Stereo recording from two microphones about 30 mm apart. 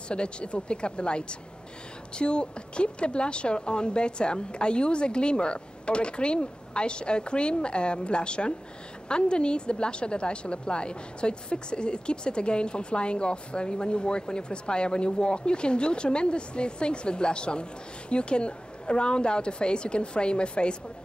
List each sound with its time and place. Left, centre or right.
0.1 s a woman's voice: left